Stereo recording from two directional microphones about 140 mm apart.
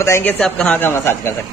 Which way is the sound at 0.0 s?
15° left (ahead or behind).